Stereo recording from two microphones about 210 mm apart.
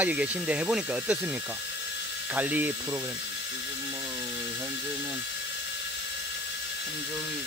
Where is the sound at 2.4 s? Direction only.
10° right (ahead or behind).